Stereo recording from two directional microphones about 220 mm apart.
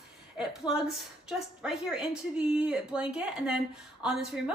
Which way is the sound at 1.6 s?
5° right (ahead or behind).